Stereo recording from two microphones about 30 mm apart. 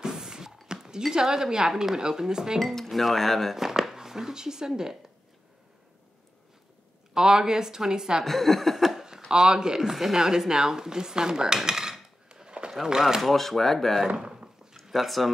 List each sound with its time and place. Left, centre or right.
0.0 s a sound: right
1.1 s dishes: right
2.6 s speech: centre
3.5 s a sound: centre
3.9 s speech: centre
7.2 s dishes: right
8.2 s speech: centre
9.3 s dishes: right
9.8 s speech: centre
10.1 s dishes: centre
12.3 s a sound: right
13.2 s speech: centre
14.0 s a sound: right
14.9 s speech: centre